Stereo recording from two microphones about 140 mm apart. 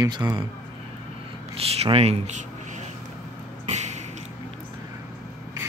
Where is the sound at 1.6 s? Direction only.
45° right (ahead or behind).